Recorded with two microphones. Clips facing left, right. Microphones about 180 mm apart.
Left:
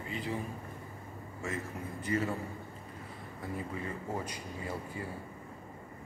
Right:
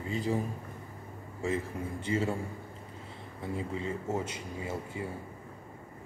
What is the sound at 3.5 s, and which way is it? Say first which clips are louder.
Speech: right 4 dB; 25° right (ahead or behind).